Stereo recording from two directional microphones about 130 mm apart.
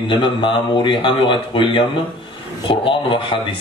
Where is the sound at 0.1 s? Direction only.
40° left (ahead or behind).